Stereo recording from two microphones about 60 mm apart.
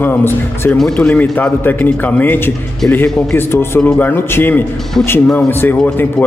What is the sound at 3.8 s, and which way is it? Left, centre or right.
A man's voice, left.